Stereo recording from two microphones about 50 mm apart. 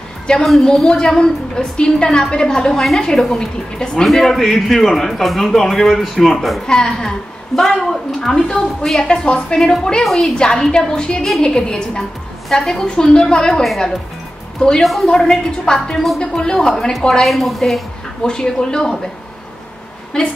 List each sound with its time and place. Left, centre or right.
0.3 s a woman's voice: centre
10.0 s speech: centre
10.3 s a woman's voice: centre
12.4 s a woman's voice: centre
14.8 s a woman's voice: centre
17.2 s speech: centre
18.2 s a woman's voice: centre
20.1 s a woman's voice: centre